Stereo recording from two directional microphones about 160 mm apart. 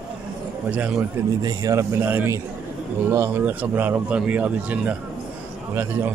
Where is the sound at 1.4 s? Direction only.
20° right (ahead or behind).